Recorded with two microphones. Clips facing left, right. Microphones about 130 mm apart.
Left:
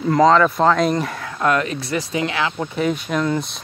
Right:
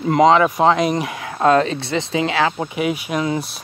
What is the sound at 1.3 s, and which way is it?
Speech, 30° right (ahead or behind).